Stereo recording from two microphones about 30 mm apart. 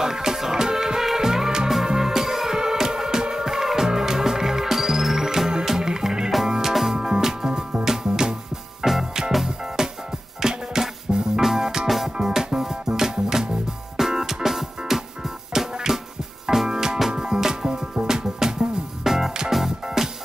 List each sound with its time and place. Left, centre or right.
0.0 s music: centre
3.4 s music: centre
6.7 s music: centre
7.0 s music: centre